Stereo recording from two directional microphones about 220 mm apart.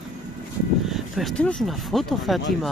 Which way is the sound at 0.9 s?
Centre (ahead or behind).